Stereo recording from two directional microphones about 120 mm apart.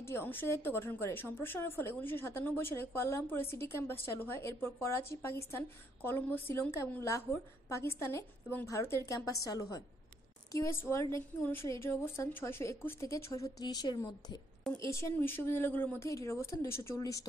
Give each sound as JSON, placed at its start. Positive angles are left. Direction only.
{"t": 0.0, "sound": "a woman's voice", "side_deg": 20}
{"t": 14.8, "sound": "a woman's voice", "side_deg": 25}